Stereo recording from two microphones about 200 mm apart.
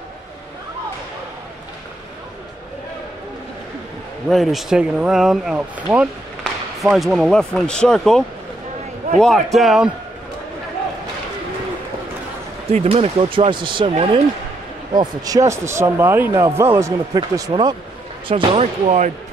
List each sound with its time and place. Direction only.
4.3 s speech: centre (ahead or behind)
12.7 s speech: 30° right (ahead or behind)
15.0 s a man's voice: 15° right (ahead or behind); by 19.1 s 35° right (ahead or behind)